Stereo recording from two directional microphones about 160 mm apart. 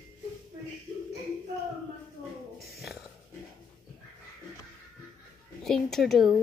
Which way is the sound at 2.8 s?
Centre (ahead or behind).